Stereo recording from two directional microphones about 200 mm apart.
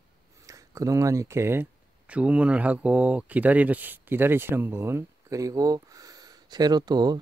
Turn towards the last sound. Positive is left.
turn(degrees=-20)  # may be behind; listen again after turning